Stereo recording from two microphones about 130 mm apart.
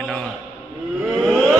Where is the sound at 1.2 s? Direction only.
Centre (ahead or behind).